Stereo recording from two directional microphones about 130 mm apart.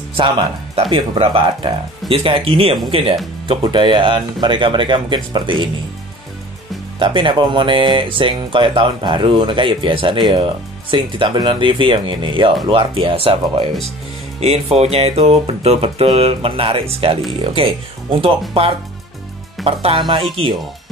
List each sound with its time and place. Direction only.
0.2 s speech: 40° right (ahead or behind)
7.0 s speech: 40° right (ahead or behind)
14.8 s speech: 50° right (ahead or behind)
19.6 s speech: 45° right (ahead or behind)